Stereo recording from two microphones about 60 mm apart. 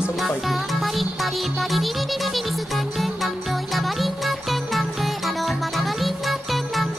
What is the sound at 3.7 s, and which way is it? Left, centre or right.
Music, centre.